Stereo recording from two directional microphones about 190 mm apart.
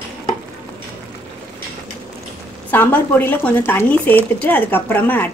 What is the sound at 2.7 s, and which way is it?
Speech, 10° left (ahead or behind).